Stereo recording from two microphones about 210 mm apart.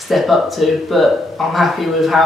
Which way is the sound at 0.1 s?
Centre (ahead or behind).